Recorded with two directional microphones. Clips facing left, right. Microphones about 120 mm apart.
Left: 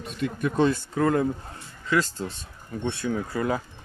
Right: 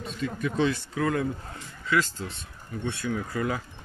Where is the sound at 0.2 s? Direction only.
50° left (ahead or behind).